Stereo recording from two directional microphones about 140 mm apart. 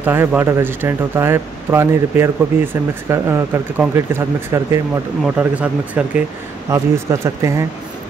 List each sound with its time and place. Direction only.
0.0 s speech: 15° right (ahead or behind)
6.7 s speech: 20° right (ahead or behind)